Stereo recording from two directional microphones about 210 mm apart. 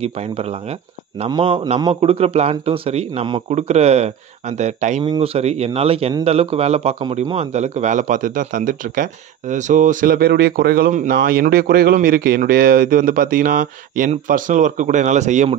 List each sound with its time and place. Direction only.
0.0 s a man's voice: 30° right (ahead or behind)